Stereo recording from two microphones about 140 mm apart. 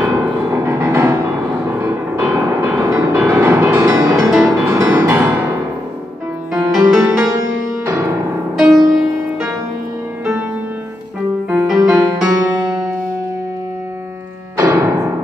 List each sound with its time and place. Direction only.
0.1 s music: 15° right (ahead or behind)
4.3 s music: centre (ahead or behind)
4.6 s music: 15° right (ahead or behind)
6.9 s music: centre (ahead or behind)
7.8 s music: 20° right (ahead or behind)
8.5 s music: centre (ahead or behind)
11.5 s music: 5° right (ahead or behind)
14.6 s music: 20° right (ahead or behind)